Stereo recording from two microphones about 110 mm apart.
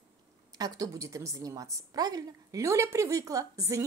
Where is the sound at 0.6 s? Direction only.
30° right (ahead or behind).